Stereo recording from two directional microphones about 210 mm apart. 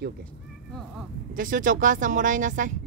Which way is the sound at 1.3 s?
40° right (ahead or behind).